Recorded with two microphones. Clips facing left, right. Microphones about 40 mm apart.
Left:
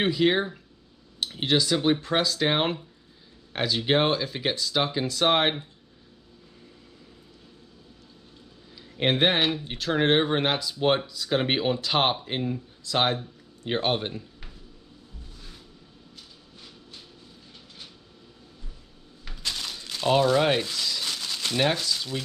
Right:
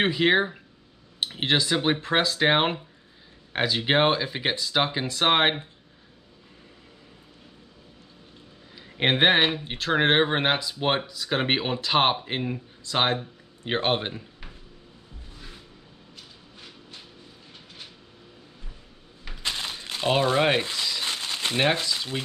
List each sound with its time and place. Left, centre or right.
0.0 s speech: right
8.7 s speech: right
19.2 s crumpling: right